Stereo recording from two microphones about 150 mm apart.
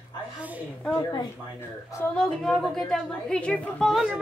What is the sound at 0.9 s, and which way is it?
Speech, 25° left (ahead or behind).